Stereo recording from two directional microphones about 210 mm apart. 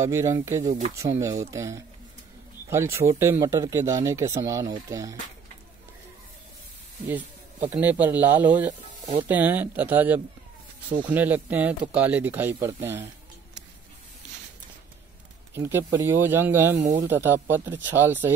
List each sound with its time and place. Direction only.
0.0 s speech: 15° right (ahead or behind)
7.7 s speech: 5° right (ahead or behind)
15.5 s speech: 10° right (ahead or behind)
16.7 s speech: 35° right (ahead or behind)
17.0 s speech: 10° right (ahead or behind)